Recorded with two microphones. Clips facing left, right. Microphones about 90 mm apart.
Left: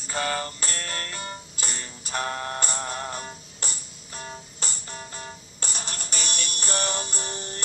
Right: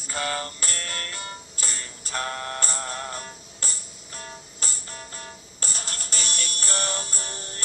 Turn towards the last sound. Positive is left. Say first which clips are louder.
# left 3 dB
turn(degrees=20)  # may be behind; listen again after turning